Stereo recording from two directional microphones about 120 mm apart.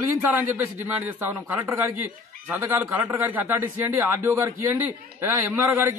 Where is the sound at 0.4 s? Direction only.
20° right (ahead or behind).